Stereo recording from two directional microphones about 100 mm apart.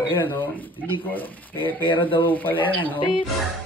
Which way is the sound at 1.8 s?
55° left (ahead or behind).